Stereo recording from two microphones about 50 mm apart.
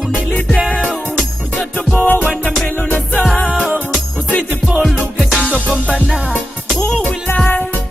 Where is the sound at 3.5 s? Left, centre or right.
Right.